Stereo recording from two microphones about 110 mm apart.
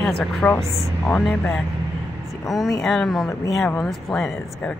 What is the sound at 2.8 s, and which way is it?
Speech, 5° left (ahead or behind).